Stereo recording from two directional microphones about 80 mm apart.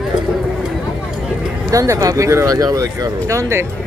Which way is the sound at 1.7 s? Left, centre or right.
Right.